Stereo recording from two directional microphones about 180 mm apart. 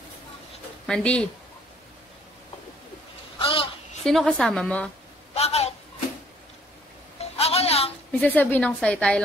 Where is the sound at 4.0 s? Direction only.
Centre (ahead or behind).